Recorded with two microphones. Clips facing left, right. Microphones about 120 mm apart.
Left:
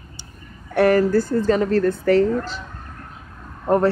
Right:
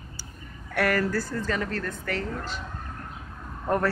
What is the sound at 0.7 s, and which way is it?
Speech, 25° left (ahead or behind).